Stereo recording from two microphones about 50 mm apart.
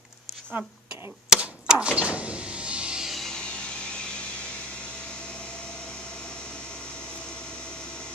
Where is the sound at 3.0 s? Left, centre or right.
Centre.